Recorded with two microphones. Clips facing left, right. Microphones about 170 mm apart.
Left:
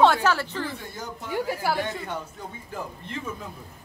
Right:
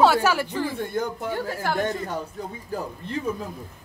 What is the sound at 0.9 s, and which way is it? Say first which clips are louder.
Speech: right 10 dB; 60° right (ahead or behind).